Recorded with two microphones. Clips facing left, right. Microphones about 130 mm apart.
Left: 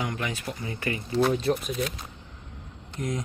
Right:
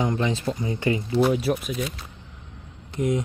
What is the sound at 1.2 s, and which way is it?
Speech, 10° right (ahead or behind).